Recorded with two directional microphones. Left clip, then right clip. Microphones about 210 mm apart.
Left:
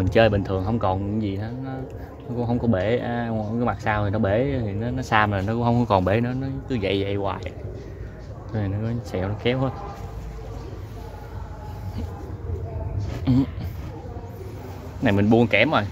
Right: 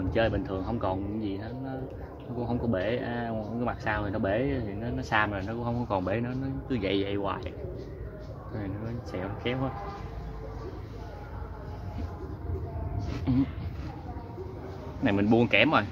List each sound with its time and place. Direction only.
0.1 s speech: 50° left (ahead or behind); by 7.5 s 20° left (ahead or behind)
8.6 s speech: 50° left (ahead or behind)
13.3 s speech: 45° left (ahead or behind)
15.0 s speech: 25° left (ahead or behind)